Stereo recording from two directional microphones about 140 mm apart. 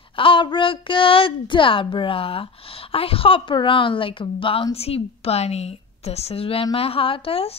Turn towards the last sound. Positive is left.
turn(degrees=40)  # may be behind; listen again after turning